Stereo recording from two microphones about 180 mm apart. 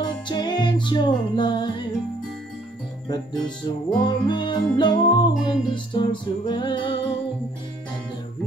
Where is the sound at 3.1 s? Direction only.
25° left (ahead or behind).